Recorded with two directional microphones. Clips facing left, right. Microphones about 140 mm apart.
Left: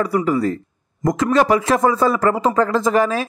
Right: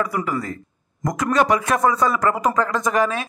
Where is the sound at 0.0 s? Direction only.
35° left (ahead or behind).